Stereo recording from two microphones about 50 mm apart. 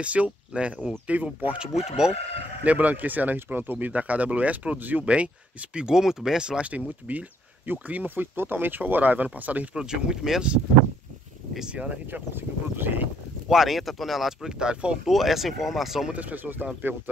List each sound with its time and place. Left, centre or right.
0.0 s speech: right
1.7 s speech: centre
2.6 s speech: right
5.0 s speech: right
7.1 s speech: right
9.8 s speech: centre
11.7 s speech: right
12.1 s speech: right
13.5 s speech: centre
14.6 s speech: centre
15.0 s speech: centre
16.1 s speech: right